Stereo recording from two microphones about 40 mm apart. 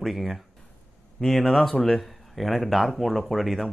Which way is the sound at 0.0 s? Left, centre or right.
Centre.